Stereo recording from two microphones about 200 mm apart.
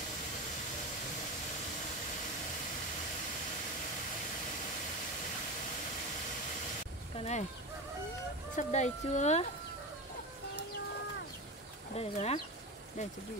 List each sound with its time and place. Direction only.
7.2 s a sound: 35° left (ahead or behind)
8.5 s speech: 35° left (ahead or behind)
11.9 s speech: 30° left (ahead or behind)